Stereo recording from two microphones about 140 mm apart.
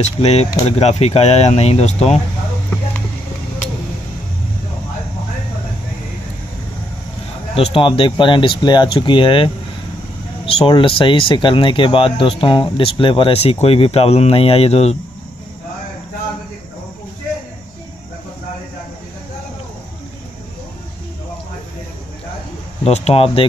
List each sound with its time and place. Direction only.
0.0 s speech: 50° left (ahead or behind)
7.5 s speech: 40° left (ahead or behind)
22.8 s speech: 50° left (ahead or behind)